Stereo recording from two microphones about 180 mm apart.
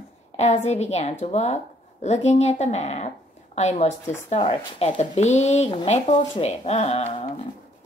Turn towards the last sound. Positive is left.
turn(degrees=35)  # may be behind; listen again after turning